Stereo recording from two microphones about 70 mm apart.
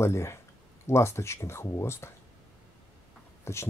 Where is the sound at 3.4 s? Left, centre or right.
Left.